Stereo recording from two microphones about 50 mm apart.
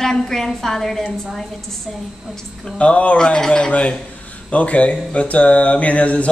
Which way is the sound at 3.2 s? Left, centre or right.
Centre.